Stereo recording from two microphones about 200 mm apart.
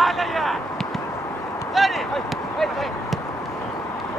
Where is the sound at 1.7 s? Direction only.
Centre (ahead or behind).